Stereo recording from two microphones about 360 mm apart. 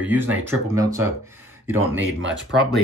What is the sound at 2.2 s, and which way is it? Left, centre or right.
Speech, right.